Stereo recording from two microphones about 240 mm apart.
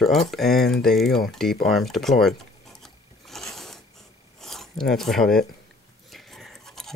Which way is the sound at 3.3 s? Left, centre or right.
Centre.